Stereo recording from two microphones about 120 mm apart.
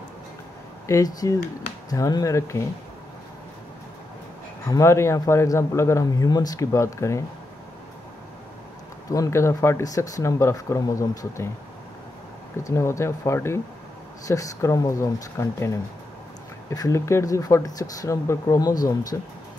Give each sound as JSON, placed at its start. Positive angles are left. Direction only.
{"t": 0.8, "sound": "speech", "side_deg": 30}
{"t": 4.6, "sound": "speech", "side_deg": 25}
{"t": 9.1, "sound": "speech", "side_deg": 25}
{"t": 12.6, "sound": "speech", "side_deg": 25}